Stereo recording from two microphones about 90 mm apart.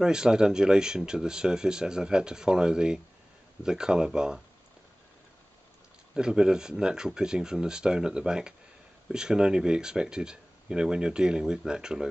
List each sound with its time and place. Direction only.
0.0 s speech: 10° right (ahead or behind)
6.1 s speech: 10° right (ahead or behind)